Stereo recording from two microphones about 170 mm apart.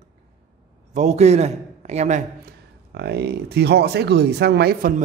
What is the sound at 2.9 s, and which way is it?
Speech, 75° right (ahead or behind).